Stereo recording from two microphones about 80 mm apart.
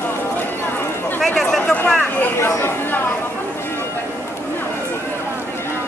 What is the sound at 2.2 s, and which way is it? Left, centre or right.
Chatter, left.